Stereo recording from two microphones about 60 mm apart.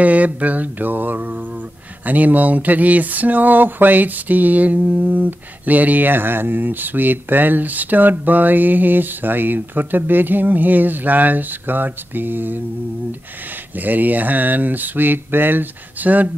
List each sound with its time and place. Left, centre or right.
0.0 s speech: right
13.7 s speech: right